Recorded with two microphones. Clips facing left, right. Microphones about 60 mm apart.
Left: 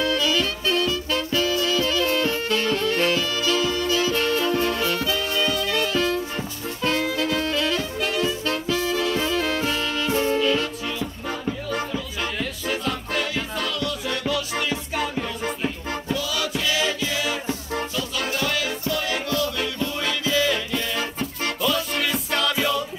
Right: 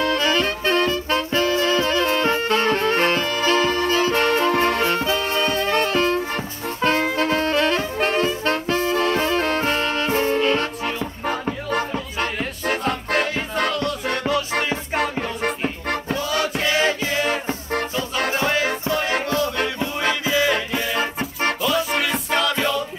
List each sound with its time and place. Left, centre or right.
0.0 s music: right
16.2 s music: right
18.3 s music: right
20.2 s music: right
21.5 s music: centre